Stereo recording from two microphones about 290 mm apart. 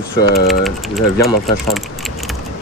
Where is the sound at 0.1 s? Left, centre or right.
Left.